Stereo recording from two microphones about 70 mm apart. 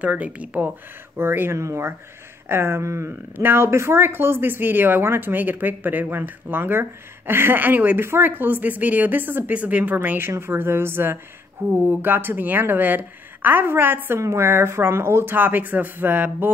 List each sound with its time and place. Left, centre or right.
0.0 s speech: centre
1.1 s a woman's voice: right
1.6 s speech: right
2.4 s a woman's voice: right
3.1 s a woman's voice: right
14.2 s speech: right